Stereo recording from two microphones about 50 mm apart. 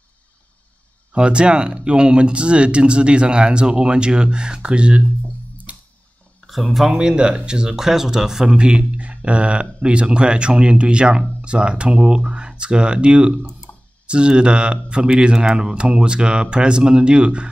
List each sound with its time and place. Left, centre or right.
1.1 s speech: centre
5.7 s music: right
6.4 s speech: centre
6.9 s speech: centre